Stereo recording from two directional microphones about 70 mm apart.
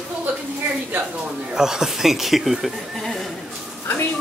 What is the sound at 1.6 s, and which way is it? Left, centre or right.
Speech, centre.